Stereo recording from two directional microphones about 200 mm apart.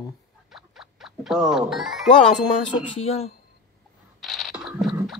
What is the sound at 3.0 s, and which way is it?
Speech, 30° left (ahead or behind).